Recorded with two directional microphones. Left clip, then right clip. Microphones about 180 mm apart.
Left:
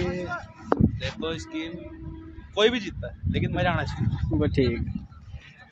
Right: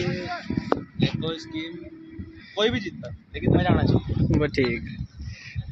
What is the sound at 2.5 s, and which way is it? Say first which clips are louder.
Speech: left 2 dB; 30° left (ahead or behind).